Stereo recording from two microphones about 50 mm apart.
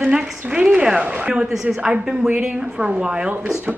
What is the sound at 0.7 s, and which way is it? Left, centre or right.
Speech, centre.